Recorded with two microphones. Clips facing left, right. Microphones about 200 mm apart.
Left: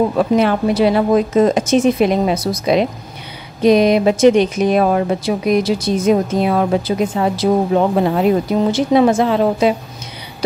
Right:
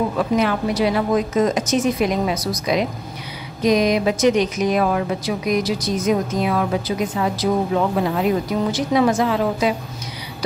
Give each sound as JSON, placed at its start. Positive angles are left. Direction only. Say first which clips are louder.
{"t": 0.2, "sound": "speech", "louder": "left 3 dB", "side_deg": 30}